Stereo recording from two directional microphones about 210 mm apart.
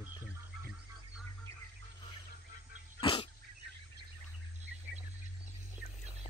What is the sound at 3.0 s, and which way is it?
Dog, 25° left (ahead or behind).